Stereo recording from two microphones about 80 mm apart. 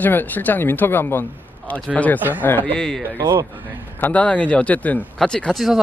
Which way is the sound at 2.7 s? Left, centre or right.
Centre.